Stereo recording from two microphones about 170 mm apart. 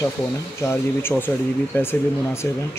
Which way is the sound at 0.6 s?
10° left (ahead or behind).